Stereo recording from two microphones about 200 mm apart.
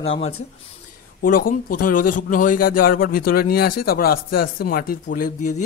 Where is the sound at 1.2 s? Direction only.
45° left (ahead or behind).